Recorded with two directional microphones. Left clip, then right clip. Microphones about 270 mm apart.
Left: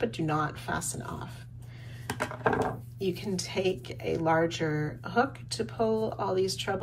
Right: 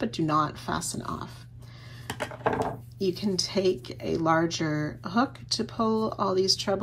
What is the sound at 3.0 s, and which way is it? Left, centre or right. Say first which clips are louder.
Speech: right 5 dB; centre.